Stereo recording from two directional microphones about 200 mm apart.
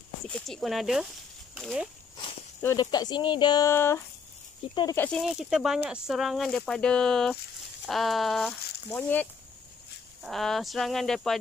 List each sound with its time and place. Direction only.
0.5 s speech: centre (ahead or behind)
2.6 s speech: 20° left (ahead or behind)
5.0 s speech: centre (ahead or behind)